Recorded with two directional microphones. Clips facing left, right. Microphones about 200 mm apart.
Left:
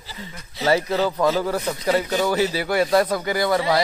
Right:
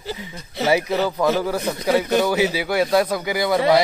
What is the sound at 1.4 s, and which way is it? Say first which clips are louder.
Speech: right 1 dB; 10° right (ahead or behind).